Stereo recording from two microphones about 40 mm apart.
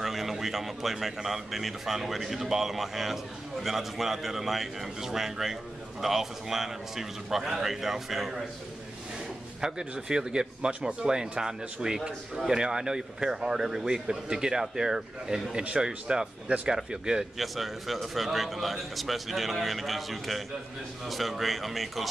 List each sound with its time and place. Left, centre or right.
0.0 s a man's voice: centre
9.6 s a man's voice: centre
17.4 s a man's voice: centre